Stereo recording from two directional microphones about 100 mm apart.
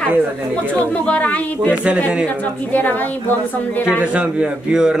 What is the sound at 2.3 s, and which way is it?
Speech, 15° left (ahead or behind).